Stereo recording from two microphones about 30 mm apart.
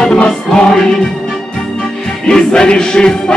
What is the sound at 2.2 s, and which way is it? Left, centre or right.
Music, left.